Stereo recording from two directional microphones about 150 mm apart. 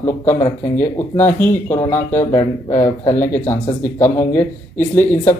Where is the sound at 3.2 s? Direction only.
15° left (ahead or behind).